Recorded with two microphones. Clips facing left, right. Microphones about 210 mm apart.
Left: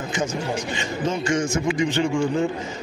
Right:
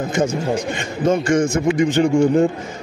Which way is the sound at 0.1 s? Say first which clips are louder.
Right 5 dB; 55° right (ahead or behind).